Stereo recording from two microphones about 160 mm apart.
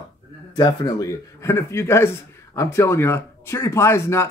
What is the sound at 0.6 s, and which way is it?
Speech, 25° left (ahead or behind).